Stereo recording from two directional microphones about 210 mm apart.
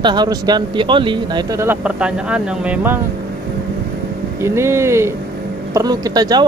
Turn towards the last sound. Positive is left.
turn(degrees=-20)  # may be behind; listen again after turning